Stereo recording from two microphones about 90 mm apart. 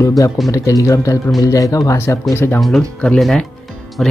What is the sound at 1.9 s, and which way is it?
Speech, 25° left (ahead or behind).